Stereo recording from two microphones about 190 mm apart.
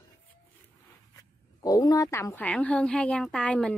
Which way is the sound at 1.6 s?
20° left (ahead or behind).